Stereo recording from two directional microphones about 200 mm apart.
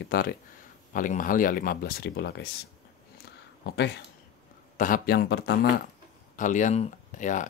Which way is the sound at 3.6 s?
60° left (ahead or behind).